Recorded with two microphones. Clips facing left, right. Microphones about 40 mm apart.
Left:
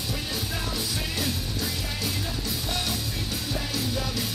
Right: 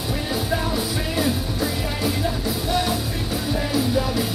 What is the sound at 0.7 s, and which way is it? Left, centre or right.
Music, centre.